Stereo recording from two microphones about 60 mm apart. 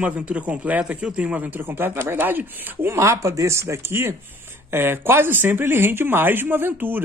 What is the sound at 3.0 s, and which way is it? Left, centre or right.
Speech, right.